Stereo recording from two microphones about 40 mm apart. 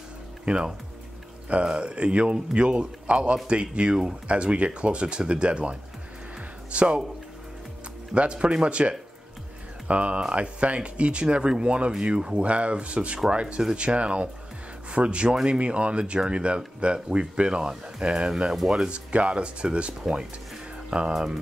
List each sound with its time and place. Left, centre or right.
0.5 s speech: right
8.1 s speech: right
21.1 s speech: centre